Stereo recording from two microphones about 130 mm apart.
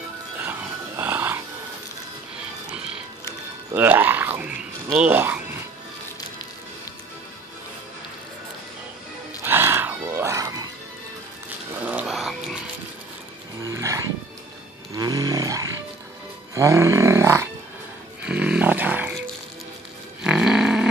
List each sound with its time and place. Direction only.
0.4 s music: 15° right (ahead or behind)
3.7 s a sound: 15° right (ahead or behind)
4.9 s speech: 10° right (ahead or behind)
9.4 s a sound: 15° right (ahead or behind)
11.8 s a sound: 10° right (ahead or behind)
13.6 s wild animals: 25° right (ahead or behind)
16.5 s snoring: 20° right (ahead or behind)
18.2 s roaring cats: 10° right (ahead or behind)
20.2 s livestock: 5° right (ahead or behind)